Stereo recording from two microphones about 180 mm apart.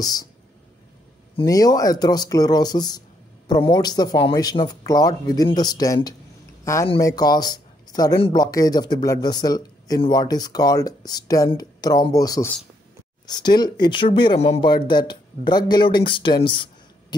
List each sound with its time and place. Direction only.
0.0 s speech: 20° left (ahead or behind)
1.4 s speech: 20° left (ahead or behind)